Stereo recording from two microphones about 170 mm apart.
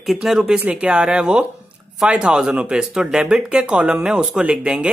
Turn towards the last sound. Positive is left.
turn(degrees=-5)  # may be behind; listen again after turning